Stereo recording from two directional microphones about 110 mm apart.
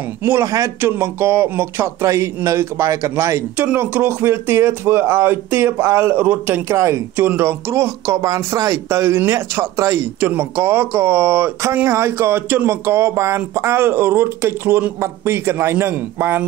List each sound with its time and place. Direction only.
0.2 s speech: 25° right (ahead or behind)